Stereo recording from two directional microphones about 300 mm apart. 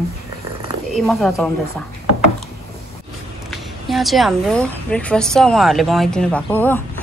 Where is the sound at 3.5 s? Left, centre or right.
Centre.